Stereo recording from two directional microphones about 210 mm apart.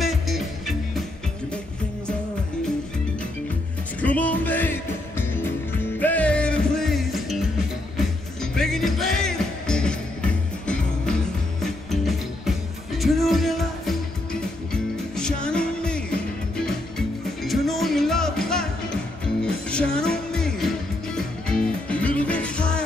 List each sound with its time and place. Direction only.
0.0 s music: centre (ahead or behind)
4.0 s music: 5° left (ahead or behind)